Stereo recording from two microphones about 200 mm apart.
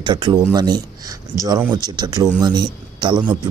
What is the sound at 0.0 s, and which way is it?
A man's voice, 20° right (ahead or behind).